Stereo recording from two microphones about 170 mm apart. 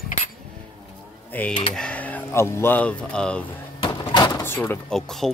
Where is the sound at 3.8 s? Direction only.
25° left (ahead or behind).